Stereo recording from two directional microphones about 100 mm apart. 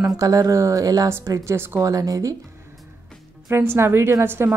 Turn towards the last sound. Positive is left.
turn(degrees=-25)  # may be behind; listen again after turning